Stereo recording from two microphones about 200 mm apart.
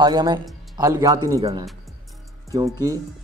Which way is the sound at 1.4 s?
30° right (ahead or behind).